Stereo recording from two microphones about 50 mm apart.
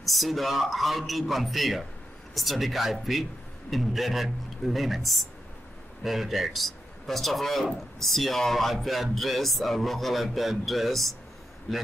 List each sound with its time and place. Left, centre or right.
0.0 s speech: centre